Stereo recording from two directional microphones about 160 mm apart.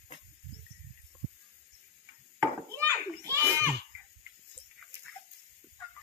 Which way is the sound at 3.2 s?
20° right (ahead or behind).